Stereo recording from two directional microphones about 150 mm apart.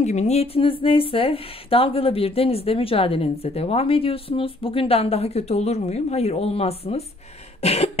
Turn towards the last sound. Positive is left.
turn(degrees=45)  # may be behind; listen again after turning